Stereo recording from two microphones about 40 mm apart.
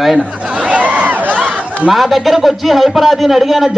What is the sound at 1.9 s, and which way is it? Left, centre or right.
A man's voice, centre.